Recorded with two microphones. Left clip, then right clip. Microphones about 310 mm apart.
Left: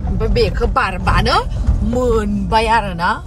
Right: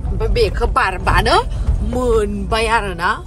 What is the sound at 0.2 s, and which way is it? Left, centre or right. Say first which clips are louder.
Speech: even; centre.